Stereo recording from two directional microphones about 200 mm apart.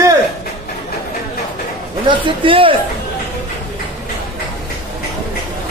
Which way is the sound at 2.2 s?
25° right (ahead or behind).